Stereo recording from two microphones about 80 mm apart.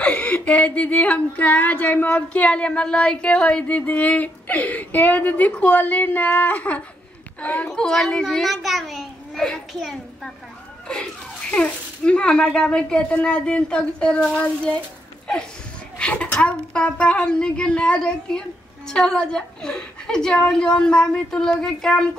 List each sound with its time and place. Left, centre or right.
0.0 s speech: centre
7.7 s a child's voice: centre
11.5 s a woman's voice: centre
16.0 s a child's voice: centre